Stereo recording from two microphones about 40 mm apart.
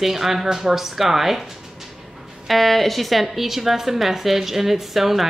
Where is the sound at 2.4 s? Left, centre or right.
Centre.